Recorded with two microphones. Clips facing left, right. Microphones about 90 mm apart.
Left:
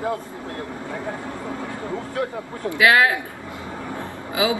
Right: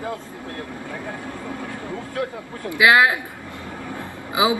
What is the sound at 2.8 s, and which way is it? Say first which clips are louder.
Speech: right 1 dB; 20° right (ahead or behind).